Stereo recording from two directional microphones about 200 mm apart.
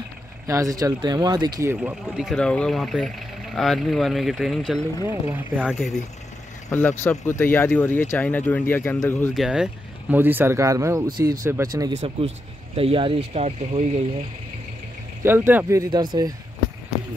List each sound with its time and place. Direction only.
0.5 s speech: 15° right (ahead or behind)
1.8 s speech: 5° right (ahead or behind)
5.0 s speech: 10° right (ahead or behind)
6.7 s speech: 10° left (ahead or behind)
9.3 s speech: centre (ahead or behind)
12.7 s speech: 25° right (ahead or behind)
15.2 s speech: 10° right (ahead or behind)